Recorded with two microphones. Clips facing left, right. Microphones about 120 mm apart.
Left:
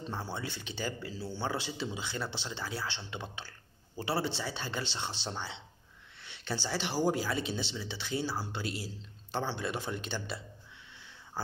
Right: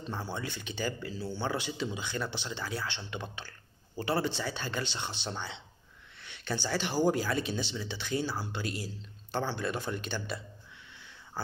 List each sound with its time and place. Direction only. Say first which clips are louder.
0.1 s speech: right 3 dB; 30° left (ahead or behind)